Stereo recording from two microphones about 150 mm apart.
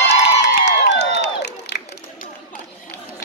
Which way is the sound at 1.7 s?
90° left.